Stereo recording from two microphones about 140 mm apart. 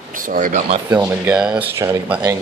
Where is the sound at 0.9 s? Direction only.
15° right (ahead or behind).